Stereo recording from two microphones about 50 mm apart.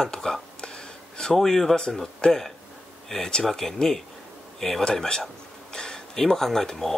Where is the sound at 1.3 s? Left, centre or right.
Centre.